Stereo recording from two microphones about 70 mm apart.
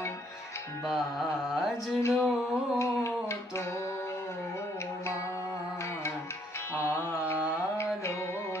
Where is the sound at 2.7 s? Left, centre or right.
Left.